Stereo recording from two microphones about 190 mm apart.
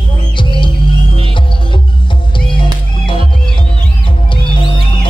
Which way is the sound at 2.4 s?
25° left (ahead or behind).